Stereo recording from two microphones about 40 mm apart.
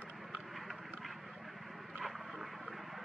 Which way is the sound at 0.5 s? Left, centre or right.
Centre.